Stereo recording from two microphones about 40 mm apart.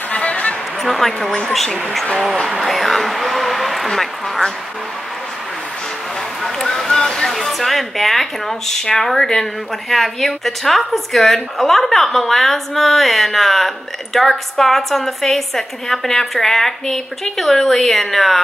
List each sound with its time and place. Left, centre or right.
0.1 s a sound: left
0.8 s speech: centre
6.4 s speech: centre
7.2 s speech: centre